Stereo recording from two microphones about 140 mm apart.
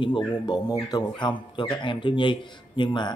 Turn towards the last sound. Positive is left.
turn(degrees=35)  # may be behind; listen again after turning